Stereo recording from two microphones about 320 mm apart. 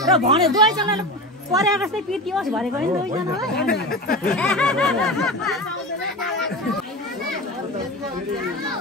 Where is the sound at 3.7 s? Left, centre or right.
Left.